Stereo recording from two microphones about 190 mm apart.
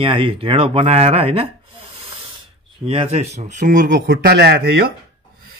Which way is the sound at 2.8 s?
35° right (ahead or behind).